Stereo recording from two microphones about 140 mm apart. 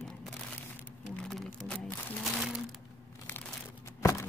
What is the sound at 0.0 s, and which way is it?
Crumpling, 5° left (ahead or behind).